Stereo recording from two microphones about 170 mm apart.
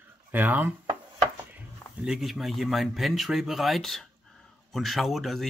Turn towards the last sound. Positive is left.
turn(degrees=0)  # may be behind; listen again after turning